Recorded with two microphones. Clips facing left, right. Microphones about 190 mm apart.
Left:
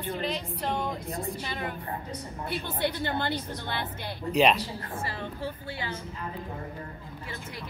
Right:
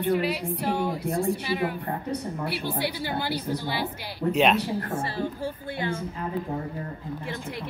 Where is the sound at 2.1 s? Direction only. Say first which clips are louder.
Right 5 dB; 65° right (ahead or behind).